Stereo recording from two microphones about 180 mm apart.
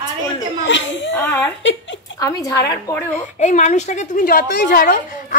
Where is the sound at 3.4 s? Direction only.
40° left (ahead or behind).